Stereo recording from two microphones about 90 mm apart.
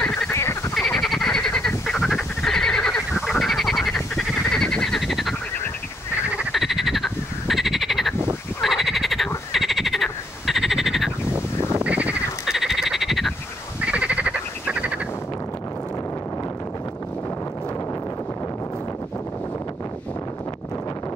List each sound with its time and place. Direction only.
0.0 s frog: 10° left (ahead or behind)
0.3 s frog: 30° left (ahead or behind)
0.7 s frog: 5° left (ahead or behind)
6.5 s frog: centre (ahead or behind)
11.8 s a sound: 15° right (ahead or behind)
12.4 s frog: 5° right (ahead or behind)
13.7 s frog: 15° right (ahead or behind)